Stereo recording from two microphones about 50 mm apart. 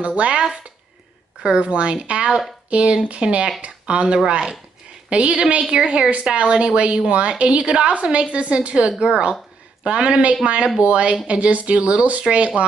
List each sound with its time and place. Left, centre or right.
0.0 s a woman's voice: right
1.4 s a woman's voice: right